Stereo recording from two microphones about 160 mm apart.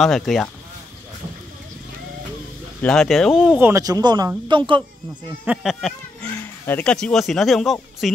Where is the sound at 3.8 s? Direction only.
25° right (ahead or behind).